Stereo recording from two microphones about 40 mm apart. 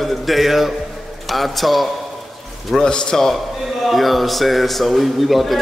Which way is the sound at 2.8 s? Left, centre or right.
Centre.